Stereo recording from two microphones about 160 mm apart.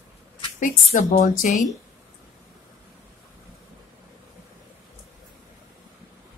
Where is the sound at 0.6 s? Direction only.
55° left (ahead or behind).